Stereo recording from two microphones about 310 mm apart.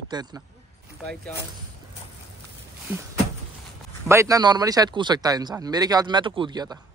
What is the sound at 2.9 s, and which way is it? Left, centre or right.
Speech, centre.